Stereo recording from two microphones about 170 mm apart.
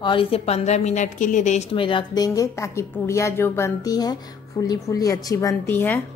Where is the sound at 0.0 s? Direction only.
30° left (ahead or behind).